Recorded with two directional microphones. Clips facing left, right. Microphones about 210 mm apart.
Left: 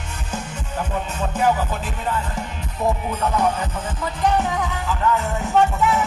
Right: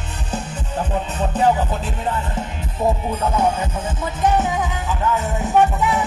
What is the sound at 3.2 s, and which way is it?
Music, 25° right (ahead or behind).